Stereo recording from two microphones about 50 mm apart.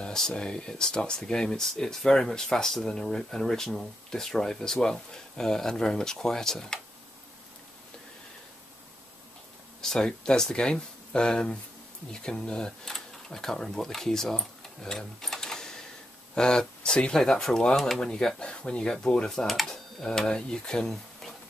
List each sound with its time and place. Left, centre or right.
0.0 s speech: centre
9.8 s speech: centre
19.4 s speech: centre